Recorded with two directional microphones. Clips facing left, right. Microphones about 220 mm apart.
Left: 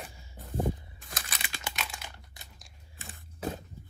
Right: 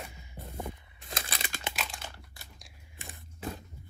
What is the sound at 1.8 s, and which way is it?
Crumpling, 10° left (ahead or behind).